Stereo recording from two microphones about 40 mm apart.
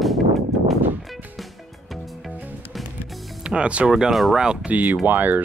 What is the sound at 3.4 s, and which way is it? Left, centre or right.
Speech, right.